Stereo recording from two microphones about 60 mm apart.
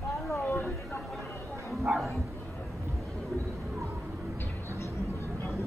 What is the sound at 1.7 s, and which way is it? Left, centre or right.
Speech, centre.